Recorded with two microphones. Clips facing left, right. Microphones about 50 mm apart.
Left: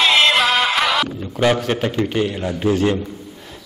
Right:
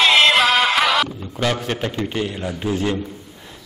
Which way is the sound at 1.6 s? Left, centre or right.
Centre.